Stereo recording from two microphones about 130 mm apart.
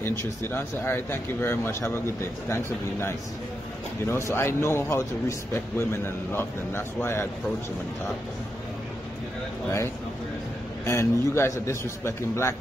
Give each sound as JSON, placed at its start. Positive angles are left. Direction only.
{"t": 0.0, "sound": "a man's voice", "side_deg": 20}
{"t": 10.9, "sound": "a man's voice", "side_deg": 20}